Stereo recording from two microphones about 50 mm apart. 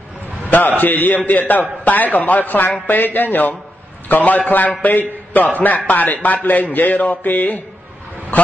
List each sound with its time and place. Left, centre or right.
0.5 s a man's voice: left